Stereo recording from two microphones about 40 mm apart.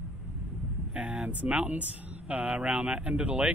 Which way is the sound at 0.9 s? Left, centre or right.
Right.